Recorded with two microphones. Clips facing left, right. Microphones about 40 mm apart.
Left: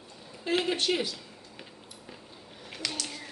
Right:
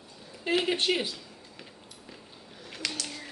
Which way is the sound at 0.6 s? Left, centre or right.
Centre.